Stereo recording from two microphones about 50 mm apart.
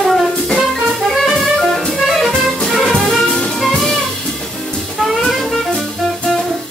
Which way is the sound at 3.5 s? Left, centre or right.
Centre.